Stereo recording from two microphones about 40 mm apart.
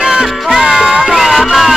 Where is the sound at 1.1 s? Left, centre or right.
Centre.